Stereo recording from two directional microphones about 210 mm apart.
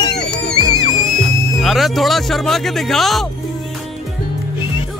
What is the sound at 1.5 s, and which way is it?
Speech, centre (ahead or behind).